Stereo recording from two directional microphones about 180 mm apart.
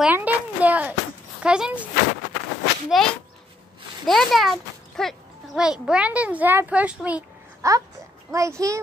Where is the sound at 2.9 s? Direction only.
Centre (ahead or behind).